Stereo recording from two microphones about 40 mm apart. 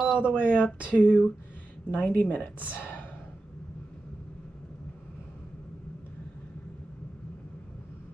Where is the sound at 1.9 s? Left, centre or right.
Left.